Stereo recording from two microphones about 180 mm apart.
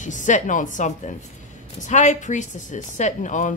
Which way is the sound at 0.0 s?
45° left (ahead or behind).